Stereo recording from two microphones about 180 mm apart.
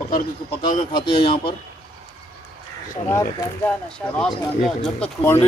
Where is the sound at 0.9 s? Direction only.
25° left (ahead or behind).